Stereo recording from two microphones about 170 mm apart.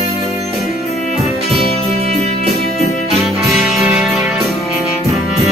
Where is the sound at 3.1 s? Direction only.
Centre (ahead or behind).